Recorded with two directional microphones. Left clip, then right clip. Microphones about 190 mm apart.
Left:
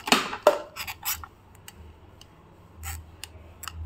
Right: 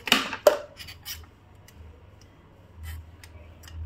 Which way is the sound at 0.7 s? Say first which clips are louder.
Left 7 dB; 60° left (ahead or behind).